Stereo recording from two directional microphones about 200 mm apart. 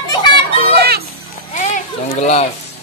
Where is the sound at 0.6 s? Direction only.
50° right (ahead or behind).